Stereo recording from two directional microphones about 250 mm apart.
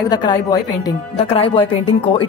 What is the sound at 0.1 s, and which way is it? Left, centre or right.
A woman's voice, centre.